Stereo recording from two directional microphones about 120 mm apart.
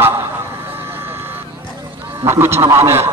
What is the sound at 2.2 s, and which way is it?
Speech, 20° right (ahead or behind).